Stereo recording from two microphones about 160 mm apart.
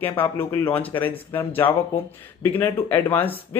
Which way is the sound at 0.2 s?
10° left (ahead or behind).